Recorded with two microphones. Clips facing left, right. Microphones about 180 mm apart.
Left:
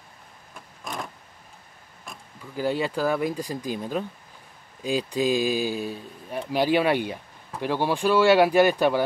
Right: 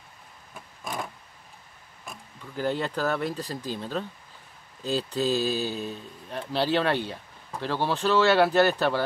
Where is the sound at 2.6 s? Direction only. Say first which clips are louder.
Left 2 dB; 10° left (ahead or behind).